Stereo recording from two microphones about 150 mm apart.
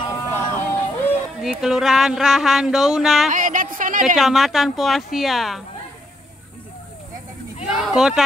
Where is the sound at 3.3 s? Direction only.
60° right (ahead or behind).